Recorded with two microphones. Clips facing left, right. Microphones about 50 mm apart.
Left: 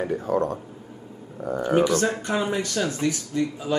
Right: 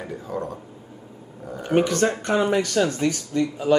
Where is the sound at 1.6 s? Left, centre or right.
Right.